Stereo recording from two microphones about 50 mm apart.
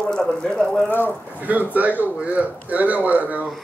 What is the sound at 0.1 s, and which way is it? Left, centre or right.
Speech, centre.